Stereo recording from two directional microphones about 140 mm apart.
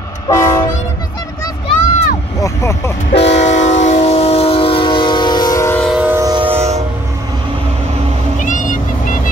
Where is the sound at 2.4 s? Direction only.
20° left (ahead or behind).